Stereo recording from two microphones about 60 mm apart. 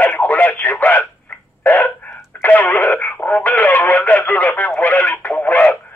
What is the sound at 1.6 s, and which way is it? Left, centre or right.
Hiccup, left.